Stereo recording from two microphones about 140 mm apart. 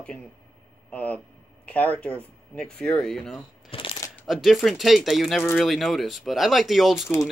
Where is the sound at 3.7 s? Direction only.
40° left (ahead or behind).